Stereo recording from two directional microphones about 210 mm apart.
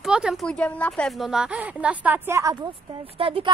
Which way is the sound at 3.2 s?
25° right (ahead or behind).